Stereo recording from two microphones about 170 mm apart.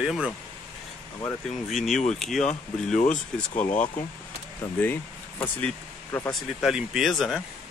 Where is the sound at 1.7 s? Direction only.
Centre (ahead or behind).